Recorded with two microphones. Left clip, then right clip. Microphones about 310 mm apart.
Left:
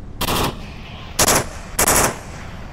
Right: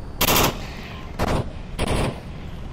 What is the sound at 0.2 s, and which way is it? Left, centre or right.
Machine gun, centre.